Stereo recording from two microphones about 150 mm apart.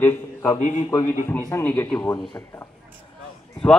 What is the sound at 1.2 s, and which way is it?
Speech, 15° left (ahead or behind).